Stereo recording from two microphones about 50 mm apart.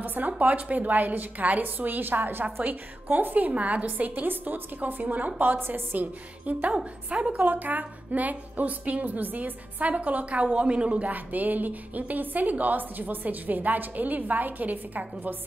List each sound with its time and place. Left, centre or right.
0.0 s a sound: right
0.4 s a woman's voice: right
5.9 s a woman's voice: right
6.8 s a woman's voice: centre